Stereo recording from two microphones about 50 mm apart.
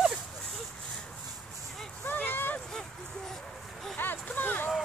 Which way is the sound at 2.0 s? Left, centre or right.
Left.